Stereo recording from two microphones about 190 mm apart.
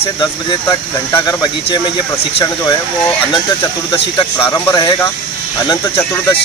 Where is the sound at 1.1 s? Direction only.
20° left (ahead or behind).